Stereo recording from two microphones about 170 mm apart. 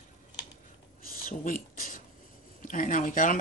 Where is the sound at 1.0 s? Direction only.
50° left (ahead or behind).